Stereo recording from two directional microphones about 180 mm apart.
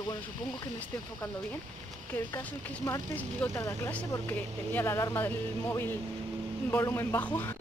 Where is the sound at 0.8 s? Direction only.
10° left (ahead or behind).